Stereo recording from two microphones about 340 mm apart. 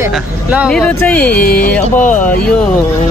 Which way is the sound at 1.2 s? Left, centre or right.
Left.